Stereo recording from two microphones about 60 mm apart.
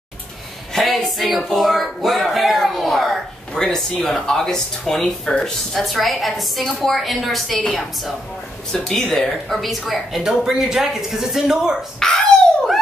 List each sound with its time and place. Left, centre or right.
0.7 s speech: centre
8.7 s speech: centre
12.0 s dog: centre